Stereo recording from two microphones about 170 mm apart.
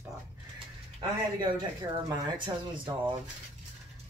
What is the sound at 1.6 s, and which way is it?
Speech, 25° right (ahead or behind).